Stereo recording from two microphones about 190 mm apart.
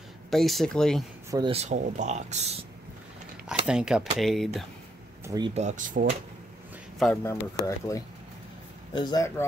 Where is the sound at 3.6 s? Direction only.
5° right (ahead or behind).